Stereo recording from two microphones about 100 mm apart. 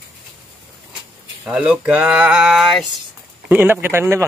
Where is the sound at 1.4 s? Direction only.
10° right (ahead or behind).